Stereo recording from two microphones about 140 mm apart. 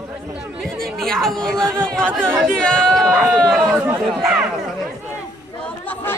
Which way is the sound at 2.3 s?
5° left (ahead or behind).